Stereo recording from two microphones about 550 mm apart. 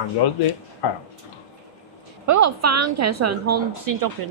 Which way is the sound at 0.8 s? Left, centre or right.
Left.